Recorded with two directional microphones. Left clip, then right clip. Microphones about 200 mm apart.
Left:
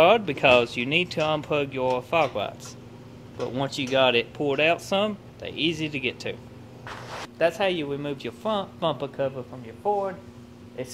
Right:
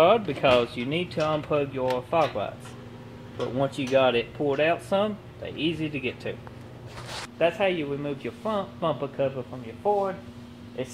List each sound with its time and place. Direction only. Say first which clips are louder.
0.0 s speech: left 2 dB; 15° left (ahead or behind)
7.3 s speech: even; 15° left (ahead or behind)